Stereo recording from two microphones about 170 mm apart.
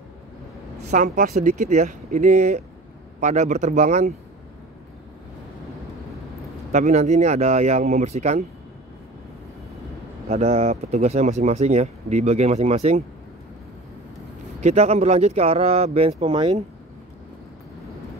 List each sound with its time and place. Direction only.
0.9 s speech: 50° right (ahead or behind)
6.7 s speech: 45° right (ahead or behind)
10.2 s speech: 40° right (ahead or behind)
14.6 s speech: 40° right (ahead or behind)